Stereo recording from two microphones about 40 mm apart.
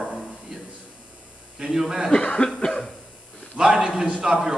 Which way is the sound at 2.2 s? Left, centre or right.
Left.